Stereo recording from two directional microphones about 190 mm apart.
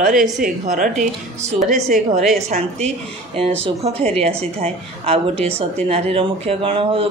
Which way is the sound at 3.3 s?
30° right (ahead or behind).